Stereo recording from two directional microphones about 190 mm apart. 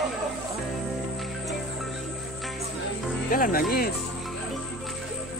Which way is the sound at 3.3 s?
45° left (ahead or behind).